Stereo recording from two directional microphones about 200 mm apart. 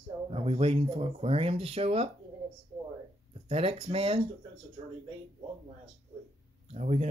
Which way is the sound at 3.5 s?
30° right (ahead or behind).